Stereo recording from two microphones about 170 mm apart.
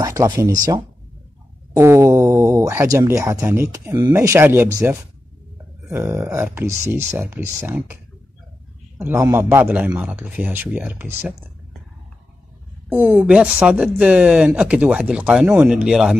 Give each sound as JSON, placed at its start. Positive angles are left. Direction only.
{"t": 0.0, "sound": "speech", "side_deg": -20}
{"t": 1.8, "sound": "speech", "side_deg": -15}
{"t": 12.9, "sound": "speech", "side_deg": -10}